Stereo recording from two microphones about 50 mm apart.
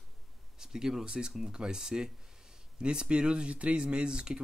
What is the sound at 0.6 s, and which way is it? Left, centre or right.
Speech, centre.